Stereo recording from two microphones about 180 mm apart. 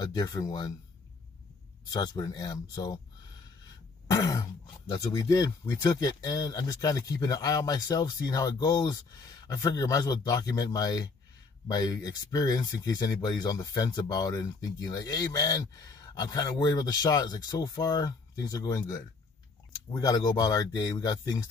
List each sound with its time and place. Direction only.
0.0 s speech: 20° left (ahead or behind)
1.9 s speech: 20° left (ahead or behind)
4.1 s speech: 20° left (ahead or behind)